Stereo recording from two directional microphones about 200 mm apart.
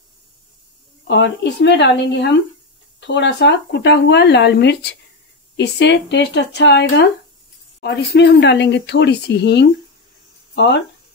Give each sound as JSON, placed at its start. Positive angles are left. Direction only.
{"t": 1.0, "sound": "speech", "side_deg": 60}